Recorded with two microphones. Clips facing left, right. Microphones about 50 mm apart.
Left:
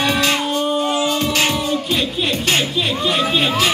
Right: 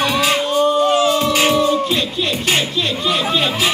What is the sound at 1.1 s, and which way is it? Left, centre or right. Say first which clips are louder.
Music: right 3 dB; centre.